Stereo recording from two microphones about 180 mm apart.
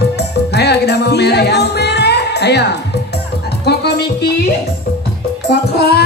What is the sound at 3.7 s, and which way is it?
Music, 65° left (ahead or behind).